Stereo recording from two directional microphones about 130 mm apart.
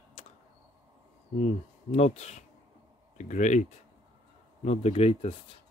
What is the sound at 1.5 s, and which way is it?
Speech, 60° left (ahead or behind).